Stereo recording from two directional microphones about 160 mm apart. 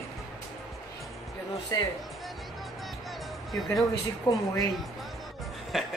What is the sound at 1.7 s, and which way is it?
Speech, 25° left (ahead or behind).